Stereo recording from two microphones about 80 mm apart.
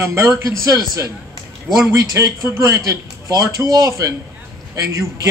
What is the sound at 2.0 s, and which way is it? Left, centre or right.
A man's voice, right.